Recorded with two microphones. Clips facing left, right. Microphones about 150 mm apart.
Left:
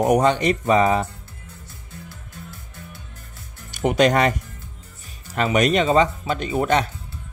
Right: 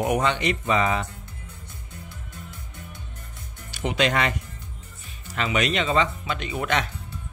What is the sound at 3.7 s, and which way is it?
Speech, 50° left (ahead or behind).